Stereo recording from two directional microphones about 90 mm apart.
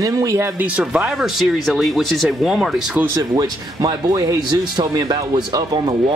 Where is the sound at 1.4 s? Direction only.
Centre (ahead or behind).